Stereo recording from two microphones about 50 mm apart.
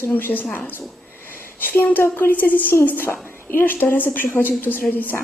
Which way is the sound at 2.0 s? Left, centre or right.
Left.